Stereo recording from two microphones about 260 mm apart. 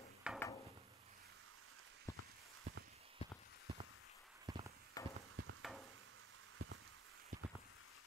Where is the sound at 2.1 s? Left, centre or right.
Centre.